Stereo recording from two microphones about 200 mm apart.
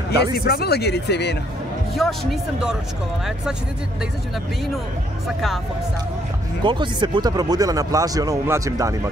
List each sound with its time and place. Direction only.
0.3 s speech: 50° left (ahead or behind)
2.0 s speech: centre (ahead or behind)
6.6 s speech: 25° right (ahead or behind)